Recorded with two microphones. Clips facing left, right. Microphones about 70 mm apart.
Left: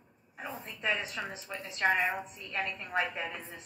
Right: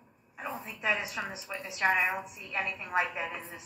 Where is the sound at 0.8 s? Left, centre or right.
Centre.